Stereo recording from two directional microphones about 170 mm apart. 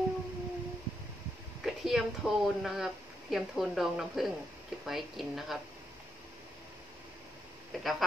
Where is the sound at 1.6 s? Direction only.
Centre (ahead or behind).